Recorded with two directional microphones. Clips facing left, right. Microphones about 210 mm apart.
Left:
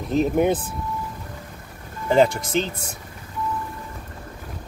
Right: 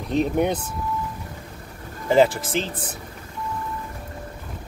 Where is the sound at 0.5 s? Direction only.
50° left (ahead or behind).